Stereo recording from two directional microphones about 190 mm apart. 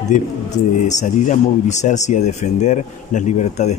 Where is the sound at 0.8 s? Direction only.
40° left (ahead or behind).